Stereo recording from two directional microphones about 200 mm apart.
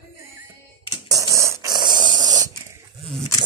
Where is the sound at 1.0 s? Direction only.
15° right (ahead or behind).